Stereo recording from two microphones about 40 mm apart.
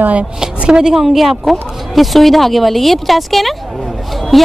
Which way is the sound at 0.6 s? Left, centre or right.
Right.